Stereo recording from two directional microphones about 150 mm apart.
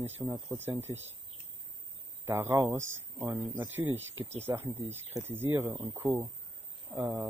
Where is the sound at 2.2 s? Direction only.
15° right (ahead or behind).